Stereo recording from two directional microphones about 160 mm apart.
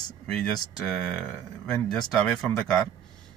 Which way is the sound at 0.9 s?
5° left (ahead or behind).